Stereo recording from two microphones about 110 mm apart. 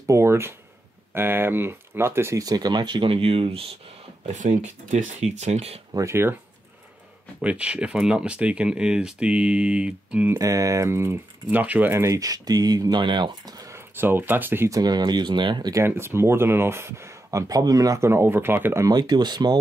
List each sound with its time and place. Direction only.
0.0 s speech: 25° right (ahead or behind); by 3.6 s 60° right (ahead or behind)
4.3 s speech: 90° right
5.9 s speech: 25° right (ahead or behind)
7.4 s speech: 10° right (ahead or behind)
10.4 s speech: 30° right (ahead or behind)
14.7 s speech: 40° right (ahead or behind)
15.7 s speech: 25° right (ahead or behind); by 19.6 s 40° right (ahead or behind)